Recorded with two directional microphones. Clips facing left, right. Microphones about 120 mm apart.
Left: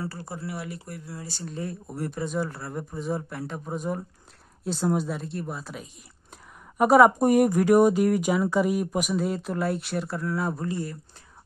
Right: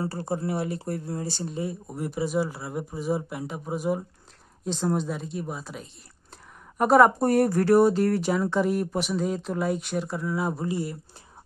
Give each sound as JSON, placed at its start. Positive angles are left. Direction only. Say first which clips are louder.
{"t": 0.1, "sound": "speech", "louder": "right 7 dB", "side_deg": -25}
{"t": 1.2, "sound": "speech", "louder": "right 5 dB", "side_deg": -25}
{"t": 1.6, "sound": "speech", "louder": "left 1 dB", "side_deg": -5}
{"t": 4.6, "sound": "a woman's voice", "louder": "left 1 dB", "side_deg": 5}